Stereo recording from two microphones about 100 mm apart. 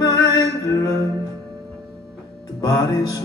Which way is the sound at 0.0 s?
40° left (ahead or behind).